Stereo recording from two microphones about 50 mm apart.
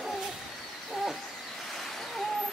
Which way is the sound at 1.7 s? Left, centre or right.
Centre.